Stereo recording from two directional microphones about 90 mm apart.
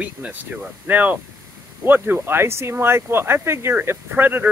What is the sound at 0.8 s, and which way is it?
Speech, 20° right (ahead or behind).